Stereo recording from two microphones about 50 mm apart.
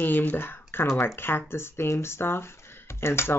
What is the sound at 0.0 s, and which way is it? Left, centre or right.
Speech, left.